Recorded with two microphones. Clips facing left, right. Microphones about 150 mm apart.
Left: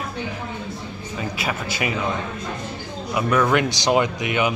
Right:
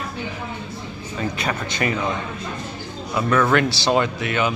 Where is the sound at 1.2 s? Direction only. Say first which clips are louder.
Right 2 dB; 5° left (ahead or behind).